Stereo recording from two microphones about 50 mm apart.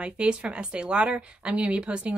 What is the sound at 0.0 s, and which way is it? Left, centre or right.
Speech, right.